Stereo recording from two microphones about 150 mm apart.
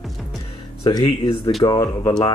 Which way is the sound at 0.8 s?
30° left (ahead or behind).